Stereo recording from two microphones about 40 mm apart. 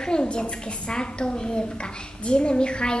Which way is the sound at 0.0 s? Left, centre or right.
Left.